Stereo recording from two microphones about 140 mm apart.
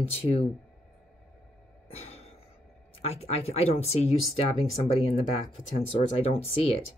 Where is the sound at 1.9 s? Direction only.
50° left (ahead or behind).